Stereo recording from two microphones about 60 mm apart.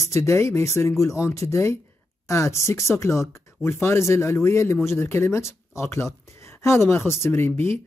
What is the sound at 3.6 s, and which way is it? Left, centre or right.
Speech, left.